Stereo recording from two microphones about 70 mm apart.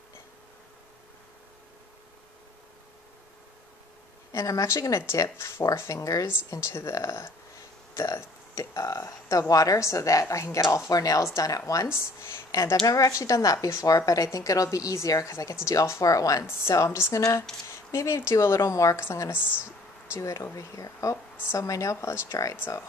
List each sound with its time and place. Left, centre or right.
4.3 s speech: left
10.9 s a woman's voice: left
12.0 s speech: left
12.4 s a sound: left
12.8 s a woman's voice: left
16.4 s speech: left
20.2 s speech: left